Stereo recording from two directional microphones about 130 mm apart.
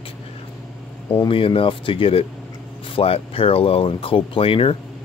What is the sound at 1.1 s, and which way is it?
Speech, 40° left (ahead or behind).